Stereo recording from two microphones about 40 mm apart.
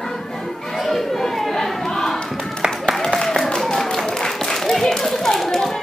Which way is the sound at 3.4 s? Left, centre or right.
Centre.